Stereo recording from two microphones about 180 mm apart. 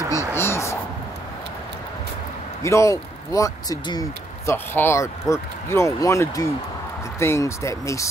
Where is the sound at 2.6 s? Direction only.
15° left (ahead or behind).